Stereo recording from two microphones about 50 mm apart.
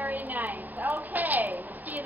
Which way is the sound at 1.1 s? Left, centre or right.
Right.